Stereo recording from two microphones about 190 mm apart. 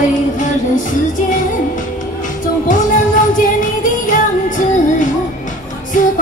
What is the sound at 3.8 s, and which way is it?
Music, 45° left (ahead or behind).